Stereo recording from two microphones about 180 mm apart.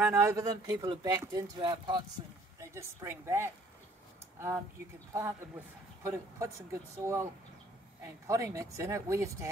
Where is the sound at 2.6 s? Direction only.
15° right (ahead or behind).